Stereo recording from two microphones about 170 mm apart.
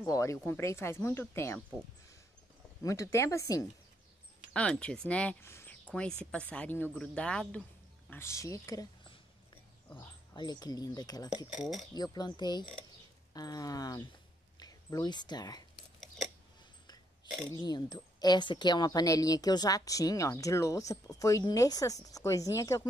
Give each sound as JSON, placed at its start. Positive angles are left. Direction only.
{"t": 0.0, "sound": "speech", "side_deg": 20}
{"t": 2.8, "sound": "speech", "side_deg": 20}
{"t": 4.6, "sound": "a woman's voice", "side_deg": 5}
{"t": 10.3, "sound": "a woman's voice", "side_deg": 25}
{"t": 11.5, "sound": "speech", "side_deg": 0}
{"t": 11.9, "sound": "a woman's voice", "side_deg": 25}
{"t": 17.6, "sound": "a woman's voice", "side_deg": 25}